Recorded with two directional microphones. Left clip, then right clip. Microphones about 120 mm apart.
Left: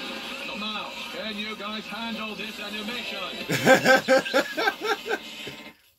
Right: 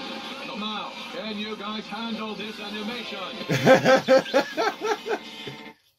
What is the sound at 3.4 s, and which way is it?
Speech, 10° left (ahead or behind).